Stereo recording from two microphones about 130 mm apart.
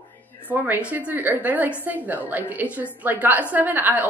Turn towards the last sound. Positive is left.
turn(degrees=-15)  # may be behind; listen again after turning